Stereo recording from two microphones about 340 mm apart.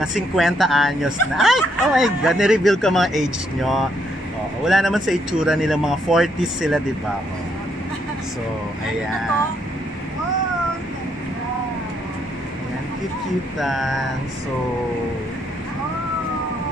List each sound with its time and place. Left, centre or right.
0.0 s speech: centre
13.6 s speech: centre